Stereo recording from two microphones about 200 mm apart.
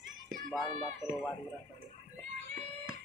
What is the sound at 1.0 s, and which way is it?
Speech, 15° left (ahead or behind).